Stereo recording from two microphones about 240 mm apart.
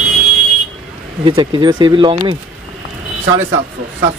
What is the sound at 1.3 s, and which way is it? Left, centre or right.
Speech, centre.